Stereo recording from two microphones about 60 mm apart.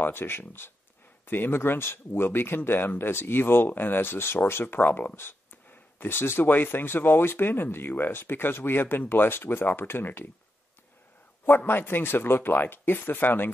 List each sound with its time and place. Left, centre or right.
0.0 s speech: left
11.4 s speech: left